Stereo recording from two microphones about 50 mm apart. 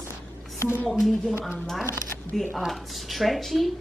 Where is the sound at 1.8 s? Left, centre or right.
Left.